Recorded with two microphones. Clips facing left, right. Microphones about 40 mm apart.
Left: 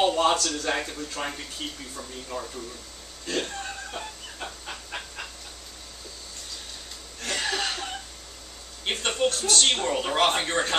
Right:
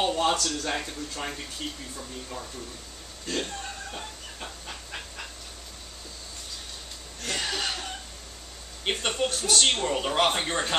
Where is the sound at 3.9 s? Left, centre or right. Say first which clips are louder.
Left 2 dB; centre.